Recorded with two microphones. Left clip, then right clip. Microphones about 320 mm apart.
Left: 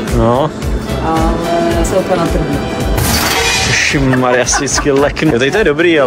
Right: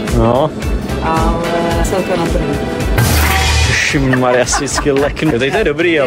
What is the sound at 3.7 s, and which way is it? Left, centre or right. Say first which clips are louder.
Speech: left 1 dB; centre.